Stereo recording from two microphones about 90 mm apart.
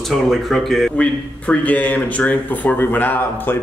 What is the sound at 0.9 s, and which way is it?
A man's voice, 15° left (ahead or behind).